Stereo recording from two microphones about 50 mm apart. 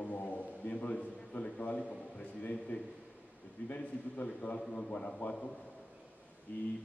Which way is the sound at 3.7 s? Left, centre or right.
Left.